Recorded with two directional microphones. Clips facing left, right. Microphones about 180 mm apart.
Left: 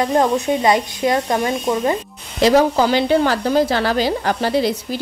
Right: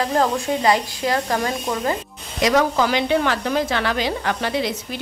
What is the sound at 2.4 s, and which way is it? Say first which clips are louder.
A woman's voice: left 4 dB; 30° left (ahead or behind).